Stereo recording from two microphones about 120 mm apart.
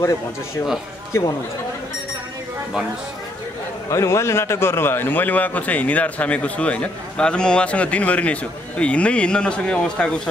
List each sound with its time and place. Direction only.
1.1 s speech: 20° left (ahead or behind)
3.9 s a man's voice: 25° left (ahead or behind); by 10.3 s 10° left (ahead or behind)